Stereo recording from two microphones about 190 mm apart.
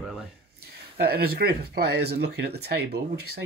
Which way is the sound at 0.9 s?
55° right (ahead or behind).